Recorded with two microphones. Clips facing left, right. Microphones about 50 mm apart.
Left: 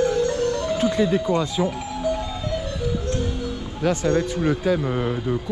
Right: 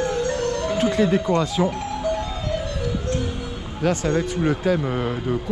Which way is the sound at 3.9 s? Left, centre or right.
Right.